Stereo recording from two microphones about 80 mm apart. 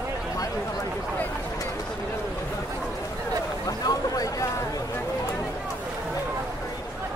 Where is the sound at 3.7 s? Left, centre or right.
Left.